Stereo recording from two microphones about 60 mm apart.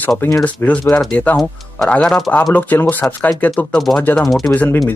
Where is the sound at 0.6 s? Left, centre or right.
Left.